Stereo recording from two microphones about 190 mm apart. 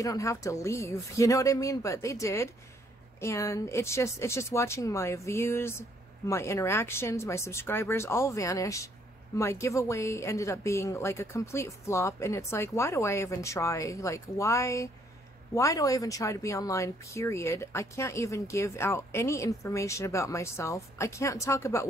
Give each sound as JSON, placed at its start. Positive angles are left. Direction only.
{"t": 0.0, "sound": "speech", "side_deg": 15}